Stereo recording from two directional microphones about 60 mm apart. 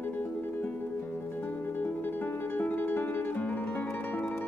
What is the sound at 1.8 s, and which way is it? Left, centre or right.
Music, left.